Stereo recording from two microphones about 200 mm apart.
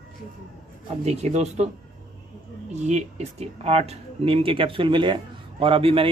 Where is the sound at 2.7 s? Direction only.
35° right (ahead or behind).